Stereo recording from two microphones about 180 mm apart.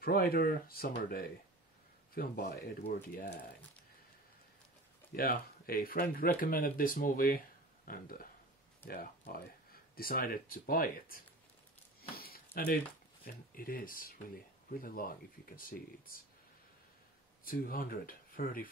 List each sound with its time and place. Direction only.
0.0 s speech: 55° left (ahead or behind)
5.1 s speech: 55° left (ahead or behind)
12.0 s a sound: 55° left (ahead or behind)
13.2 s speech: 50° left (ahead or behind)
17.5 s speech: 55° left (ahead or behind)